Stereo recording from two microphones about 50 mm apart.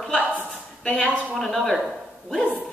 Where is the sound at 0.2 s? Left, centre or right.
Right.